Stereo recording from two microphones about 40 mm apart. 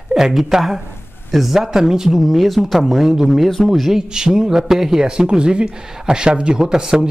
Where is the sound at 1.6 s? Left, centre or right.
Centre.